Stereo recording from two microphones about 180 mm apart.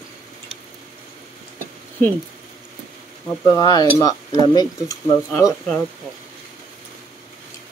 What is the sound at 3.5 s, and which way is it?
Speech, 20° left (ahead or behind).